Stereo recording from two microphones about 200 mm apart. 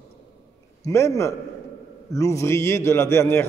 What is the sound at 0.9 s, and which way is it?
A man's voice, 15° left (ahead or behind).